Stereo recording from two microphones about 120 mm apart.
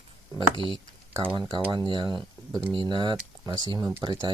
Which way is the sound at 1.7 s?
40° right (ahead or behind).